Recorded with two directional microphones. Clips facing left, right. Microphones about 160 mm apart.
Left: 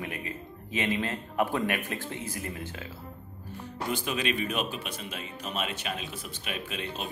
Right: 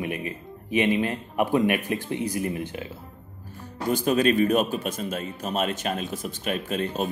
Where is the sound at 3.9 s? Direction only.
40° right (ahead or behind).